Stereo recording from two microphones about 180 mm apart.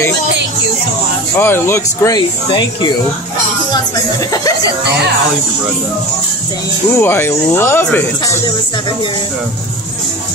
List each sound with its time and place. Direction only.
1.3 s speech: 15° left (ahead or behind)
7.0 s speech: 15° left (ahead or behind)